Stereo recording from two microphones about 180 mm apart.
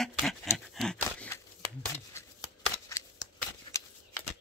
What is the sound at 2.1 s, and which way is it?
Shuffling cards, 20° left (ahead or behind).